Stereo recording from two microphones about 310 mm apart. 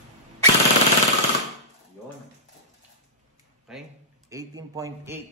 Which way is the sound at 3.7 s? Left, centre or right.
Centre.